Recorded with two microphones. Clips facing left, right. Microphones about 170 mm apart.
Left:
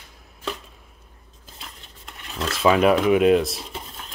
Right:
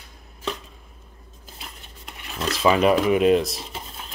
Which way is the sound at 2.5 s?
Centre (ahead or behind).